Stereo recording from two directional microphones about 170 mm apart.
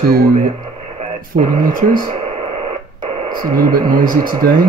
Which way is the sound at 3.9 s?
55° right (ahead or behind).